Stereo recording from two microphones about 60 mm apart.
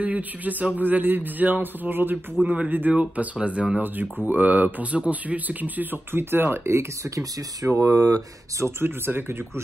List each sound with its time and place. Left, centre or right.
0.0 s speech: right
0.7 s mantra: right
2.4 s speech: right
3.8 s mantra: right
4.3 s speech: right
8.8 s mantra: right